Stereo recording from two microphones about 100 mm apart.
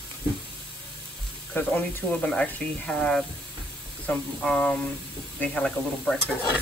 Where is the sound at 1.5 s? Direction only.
15° left (ahead or behind).